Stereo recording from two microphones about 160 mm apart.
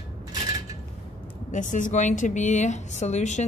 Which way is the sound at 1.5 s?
50° left (ahead or behind).